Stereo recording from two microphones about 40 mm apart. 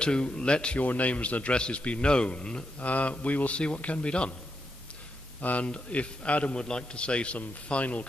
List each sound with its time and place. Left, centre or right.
0.0 s a man's voice: left
0.7 s speech: left
2.8 s speech: left
5.4 s a man's voice: left